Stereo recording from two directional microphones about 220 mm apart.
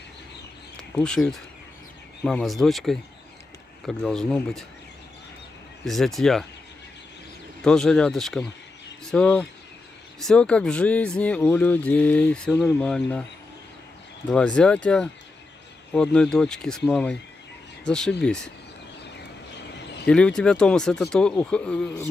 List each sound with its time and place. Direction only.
0.9 s speech: 5° left (ahead or behind)
5.9 s speech: centre (ahead or behind)
7.6 s speech: centre (ahead or behind)
14.3 s speech: 5° left (ahead or behind)
19.7 s a sound: 50° left (ahead or behind)
20.1 s speech: 5° left (ahead or behind)